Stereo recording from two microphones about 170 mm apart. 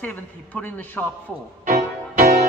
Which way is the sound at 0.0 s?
10° left (ahead or behind).